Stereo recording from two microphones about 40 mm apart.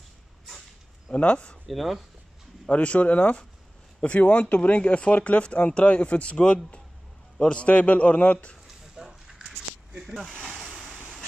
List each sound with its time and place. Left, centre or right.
1.1 s speech: left
1.7 s speech: centre
2.7 s speech: left
9.0 s a sound: centre
9.9 s speech: centre
10.2 s a sound: centre